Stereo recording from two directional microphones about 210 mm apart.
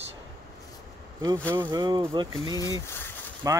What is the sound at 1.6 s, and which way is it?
Speech, 20° right (ahead or behind).